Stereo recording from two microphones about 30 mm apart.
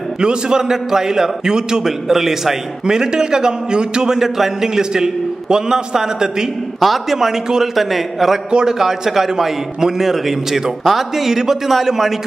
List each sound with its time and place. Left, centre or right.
0.2 s a man's voice: right; by 2.5 s centre
2.9 s a man's voice: right
4.2 s a man's voice: centre
6.8 s a man's voice: centre
7.4 s a man's voice: centre
7.7 s a man's voice: centre
8.6 s a man's voice: centre